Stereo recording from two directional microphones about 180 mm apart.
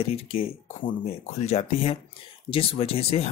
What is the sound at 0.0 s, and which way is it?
Speech, 30° left (ahead or behind).